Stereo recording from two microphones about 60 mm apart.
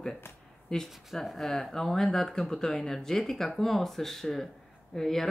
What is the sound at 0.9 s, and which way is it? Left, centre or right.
Speech, centre.